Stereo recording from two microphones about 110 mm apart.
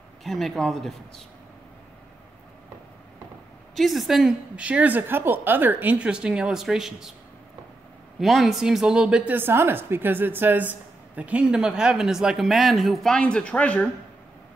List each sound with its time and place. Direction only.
0.2 s speech: centre (ahead or behind)
3.7 s a woman's voice: centre (ahead or behind)
8.2 s a woman's voice: centre (ahead or behind)